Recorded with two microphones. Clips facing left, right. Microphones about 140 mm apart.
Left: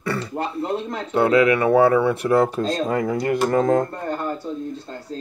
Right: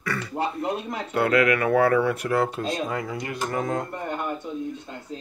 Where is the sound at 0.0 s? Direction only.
30° left (ahead or behind).